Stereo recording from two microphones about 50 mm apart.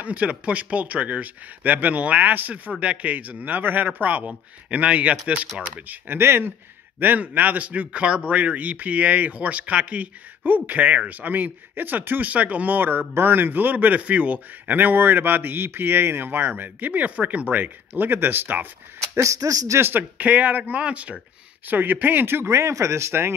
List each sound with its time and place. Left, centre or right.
0.0 s a man's voice: right
6.0 s speech: right
7.0 s a man's voice: right
12.3 s a man's voice: right
19.1 s speech: right
19.8 s a man's voice: right
21.6 s speech: right
22.5 s speech: right